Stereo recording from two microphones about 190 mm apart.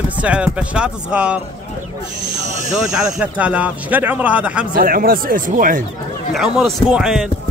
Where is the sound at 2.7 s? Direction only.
5° right (ahead or behind).